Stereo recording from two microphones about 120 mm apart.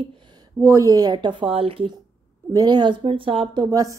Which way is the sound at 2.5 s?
35° right (ahead or behind).